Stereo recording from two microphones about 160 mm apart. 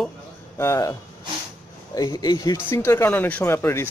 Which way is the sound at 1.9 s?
25° left (ahead or behind).